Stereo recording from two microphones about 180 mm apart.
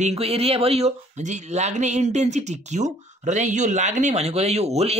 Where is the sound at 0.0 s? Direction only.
35° right (ahead or behind).